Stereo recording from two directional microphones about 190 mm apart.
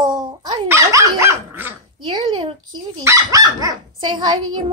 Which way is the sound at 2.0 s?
25° right (ahead or behind).